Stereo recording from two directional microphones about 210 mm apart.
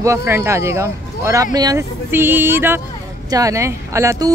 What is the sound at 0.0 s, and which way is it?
Speech, 15° right (ahead or behind).